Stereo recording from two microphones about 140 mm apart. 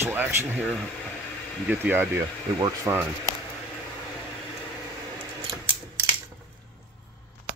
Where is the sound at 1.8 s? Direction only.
15° right (ahead or behind).